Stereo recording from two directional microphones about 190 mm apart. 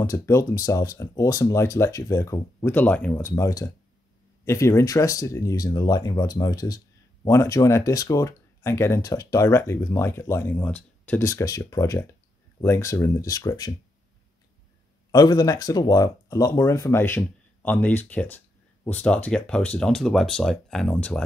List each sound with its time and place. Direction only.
0.0 s speech: 15° left (ahead or behind)
15.0 s speech: 20° left (ahead or behind)